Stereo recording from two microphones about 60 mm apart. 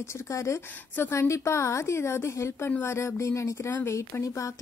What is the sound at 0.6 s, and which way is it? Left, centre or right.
Speech, left.